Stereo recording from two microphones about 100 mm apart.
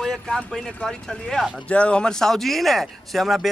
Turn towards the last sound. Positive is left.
turn(degrees=0)  # may be behind; listen again after turning